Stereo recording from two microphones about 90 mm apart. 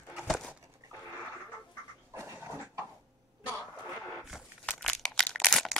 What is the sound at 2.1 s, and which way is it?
Dog, 25° right (ahead or behind).